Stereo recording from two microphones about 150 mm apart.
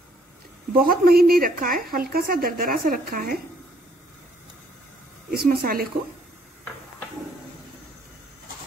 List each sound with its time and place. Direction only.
0.7 s a woman's voice: 80° right
5.3 s speech: 90° right